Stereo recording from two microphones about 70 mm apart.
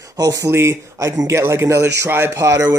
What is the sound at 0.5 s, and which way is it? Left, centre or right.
A man's voice, right.